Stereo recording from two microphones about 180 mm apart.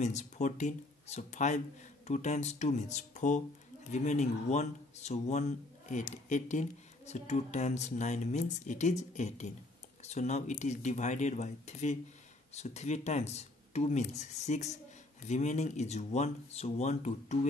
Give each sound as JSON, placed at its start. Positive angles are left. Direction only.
{"t": 0.0, "sound": "speech", "side_deg": 40}